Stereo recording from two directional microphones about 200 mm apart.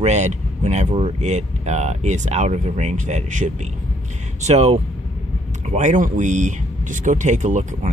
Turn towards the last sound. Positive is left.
turn(degrees=-35)  # may be behind; listen again after turning